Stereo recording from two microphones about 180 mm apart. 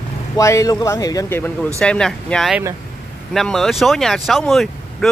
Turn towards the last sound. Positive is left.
turn(degrees=0)  # may be behind; listen again after turning